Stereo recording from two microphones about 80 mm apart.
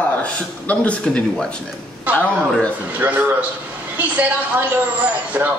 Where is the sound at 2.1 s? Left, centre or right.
Right.